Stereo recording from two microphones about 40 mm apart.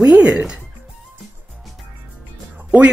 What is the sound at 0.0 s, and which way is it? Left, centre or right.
Music, right.